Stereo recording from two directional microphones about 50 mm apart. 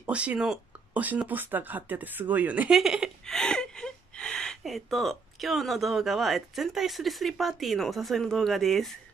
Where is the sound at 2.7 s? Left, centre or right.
Centre.